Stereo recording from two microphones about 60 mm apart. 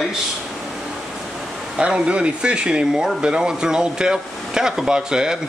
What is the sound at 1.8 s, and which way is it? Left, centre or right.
Speech, centre.